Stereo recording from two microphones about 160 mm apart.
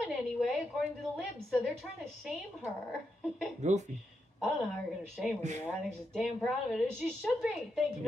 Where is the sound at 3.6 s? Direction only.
45° right (ahead or behind).